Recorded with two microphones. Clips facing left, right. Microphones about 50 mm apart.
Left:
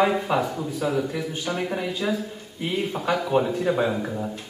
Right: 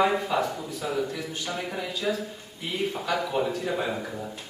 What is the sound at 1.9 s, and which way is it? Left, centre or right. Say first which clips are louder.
A man's voice: left 2 dB; left.